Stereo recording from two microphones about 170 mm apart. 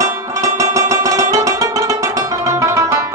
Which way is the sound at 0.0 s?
20° right (ahead or behind).